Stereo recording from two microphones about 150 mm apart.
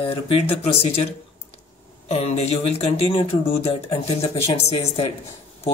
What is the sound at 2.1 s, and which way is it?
Speech, 45° left (ahead or behind).